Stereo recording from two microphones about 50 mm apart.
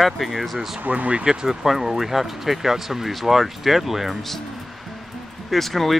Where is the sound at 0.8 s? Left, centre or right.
Right.